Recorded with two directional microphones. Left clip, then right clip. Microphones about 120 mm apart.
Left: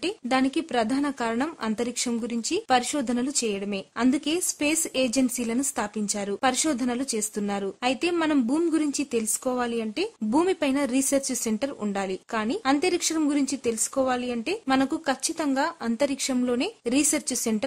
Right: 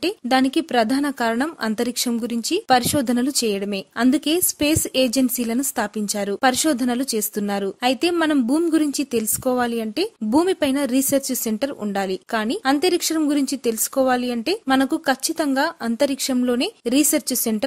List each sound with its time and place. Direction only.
0.0 s a woman's voice: 35° right (ahead or behind)